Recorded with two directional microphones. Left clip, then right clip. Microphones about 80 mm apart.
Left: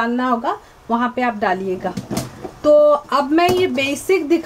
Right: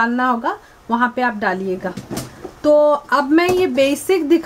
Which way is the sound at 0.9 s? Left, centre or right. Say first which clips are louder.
Right 1 dB; right.